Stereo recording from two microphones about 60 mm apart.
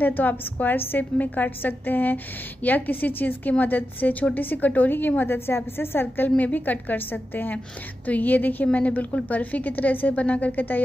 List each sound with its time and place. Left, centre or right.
0.0 s a woman's voice: left